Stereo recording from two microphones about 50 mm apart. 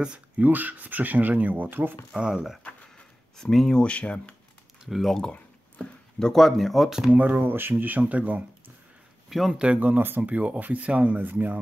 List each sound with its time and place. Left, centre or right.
0.4 s speech: right
2.1 s speech: centre
3.3 s speech: centre
3.8 s speech: left
4.8 s speech: centre
5.8 s a sound: centre
6.3 s speech: centre
7.2 s speech: right
9.3 s speech: centre
9.8 s speech: right
10.3 s speech: right